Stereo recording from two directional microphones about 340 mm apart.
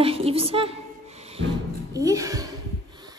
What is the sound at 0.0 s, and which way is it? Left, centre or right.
Speech, centre.